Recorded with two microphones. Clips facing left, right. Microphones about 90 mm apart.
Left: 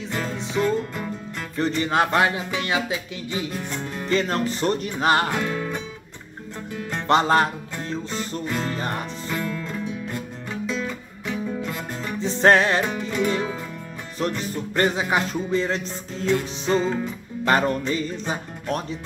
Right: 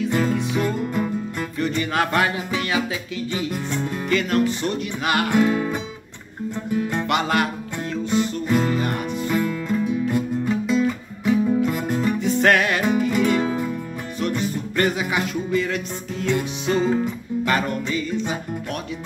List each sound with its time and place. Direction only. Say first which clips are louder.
0.6 s music: even; 10° right (ahead or behind)
1.8 s speech: left 1 dB; 25° left (ahead or behind)
3.5 s music: right 4 dB; 5° right (ahead or behind)
4.1 s music: right 2 dB; 30° left (ahead or behind)
5.3 s music: right 7 dB; 10° right (ahead or behind)
7.1 s music: left 5 dB; 30° left (ahead or behind)
8.1 s music: right 12 dB; 5° right (ahead or behind)
12.2 s music: left 3 dB; 25° left (ahead or behind)
12.9 s music: right 5 dB; 5° right (ahead or behind)
14.2 s music: right 2 dB; 35° left (ahead or behind)
16.7 s music: right 2 dB; 5° right (ahead or behind)
17.5 s music: left 4 dB; 35° left (ahead or behind)